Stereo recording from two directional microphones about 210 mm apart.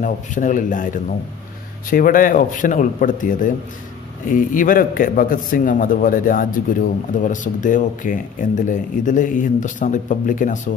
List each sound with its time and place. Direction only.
0.0 s speech: 40° left (ahead or behind)